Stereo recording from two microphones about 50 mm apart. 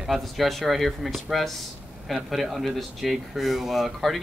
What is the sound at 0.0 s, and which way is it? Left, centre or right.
Speech, centre.